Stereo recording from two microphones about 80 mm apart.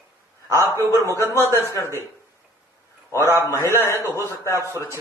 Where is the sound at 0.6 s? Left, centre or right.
Left.